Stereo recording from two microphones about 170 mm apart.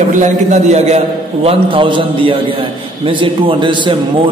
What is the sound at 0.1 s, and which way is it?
A man's voice, 45° right (ahead or behind).